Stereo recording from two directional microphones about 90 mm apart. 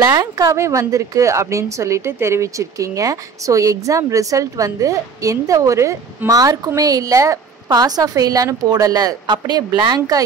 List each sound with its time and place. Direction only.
0.0 s speech: 45° right (ahead or behind)